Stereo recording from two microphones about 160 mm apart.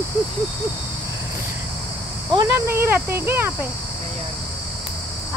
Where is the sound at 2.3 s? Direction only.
20° right (ahead or behind).